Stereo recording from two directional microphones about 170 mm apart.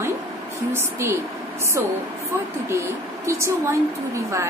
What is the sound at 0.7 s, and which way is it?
Speech, 15° right (ahead or behind).